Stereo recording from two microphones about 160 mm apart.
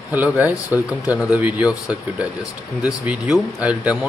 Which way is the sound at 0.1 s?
10° right (ahead or behind).